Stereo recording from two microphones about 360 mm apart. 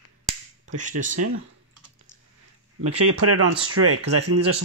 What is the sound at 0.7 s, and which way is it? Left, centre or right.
Speech, right.